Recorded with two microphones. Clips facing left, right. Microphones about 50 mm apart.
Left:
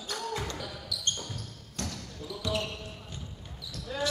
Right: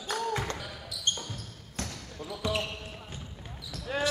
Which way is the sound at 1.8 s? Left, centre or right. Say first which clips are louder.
Even; right.